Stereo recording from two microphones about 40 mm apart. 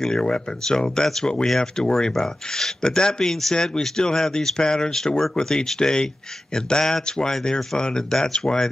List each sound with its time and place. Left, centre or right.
0.0 s speech: centre